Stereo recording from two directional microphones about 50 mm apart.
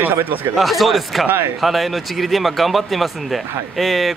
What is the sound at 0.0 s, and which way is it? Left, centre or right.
Speech, right.